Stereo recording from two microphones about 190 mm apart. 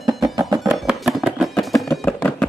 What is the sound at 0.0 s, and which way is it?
Music, 20° right (ahead or behind).